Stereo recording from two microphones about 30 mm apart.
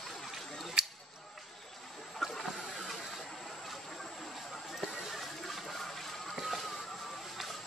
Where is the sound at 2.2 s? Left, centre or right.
Centre.